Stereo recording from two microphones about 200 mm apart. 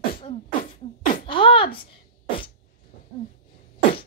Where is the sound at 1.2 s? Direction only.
25° left (ahead or behind).